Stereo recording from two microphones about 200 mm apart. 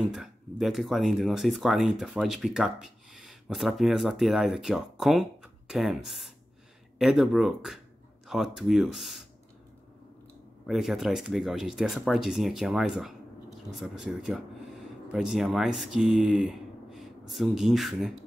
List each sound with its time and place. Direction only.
0.1 s speech: centre (ahead or behind)
10.7 s speech: centre (ahead or behind)